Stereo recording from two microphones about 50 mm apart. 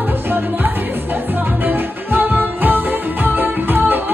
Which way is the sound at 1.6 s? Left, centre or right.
Right.